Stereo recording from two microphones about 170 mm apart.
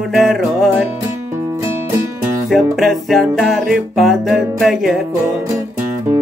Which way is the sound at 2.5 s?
Centre (ahead or behind).